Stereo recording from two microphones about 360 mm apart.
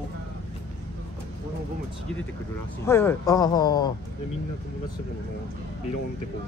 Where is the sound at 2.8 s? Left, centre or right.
Centre.